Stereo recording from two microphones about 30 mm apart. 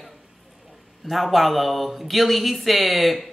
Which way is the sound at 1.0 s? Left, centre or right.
Centre.